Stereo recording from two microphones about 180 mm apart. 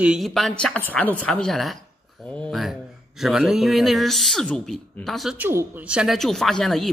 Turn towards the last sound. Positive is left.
turn(degrees=0)  # may be behind; listen again after turning